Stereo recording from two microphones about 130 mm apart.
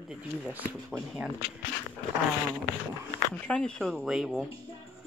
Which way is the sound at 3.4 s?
10° left (ahead or behind).